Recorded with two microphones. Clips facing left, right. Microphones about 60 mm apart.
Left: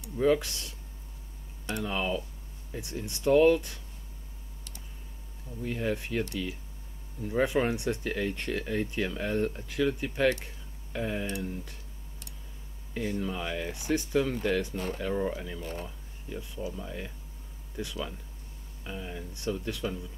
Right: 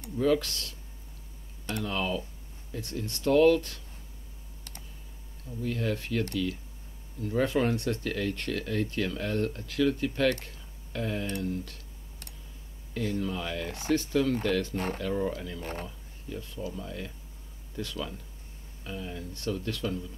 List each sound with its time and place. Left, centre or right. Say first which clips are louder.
0.2 s speech: left 1 dB; centre
5.4 s speech: right 1 dB; centre
12.9 s speech: right 1 dB; centre
15.6 s speech: right 1 dB; right
16.3 s speech: even; centre